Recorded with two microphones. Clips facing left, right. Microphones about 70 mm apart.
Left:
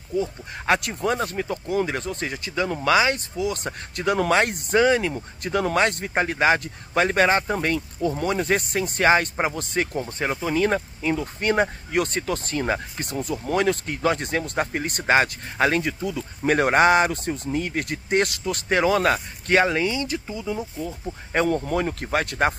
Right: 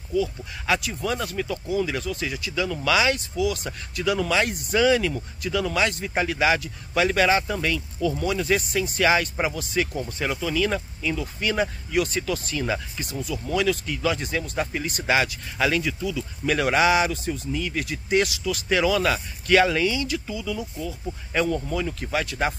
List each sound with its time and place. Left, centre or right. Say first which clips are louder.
0.1 s speech: right 1 dB; left
0.7 s speech: left 3 dB; left
1.1 s speech: left 2 dB; left
5.4 s speech: left 3 dB; left